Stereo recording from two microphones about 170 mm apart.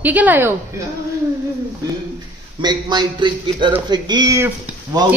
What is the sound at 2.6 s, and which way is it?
A man's voice, 25° right (ahead or behind).